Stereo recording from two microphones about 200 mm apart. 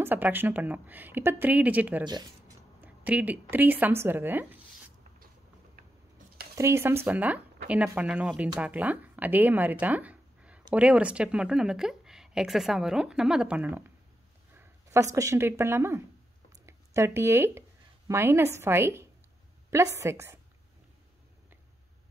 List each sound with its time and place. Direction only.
0.0 s speech: 10° right (ahead or behind)
2.0 s speech: 20° right (ahead or behind)
2.8 s speech: 10° right (ahead or behind)
6.5 s speech: 15° right (ahead or behind)
14.5 s a sound: 15° right (ahead or behind)
15.1 s speech: 15° right (ahead or behind)